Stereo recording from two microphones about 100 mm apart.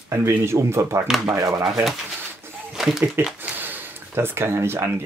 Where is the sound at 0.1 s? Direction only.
25° right (ahead or behind).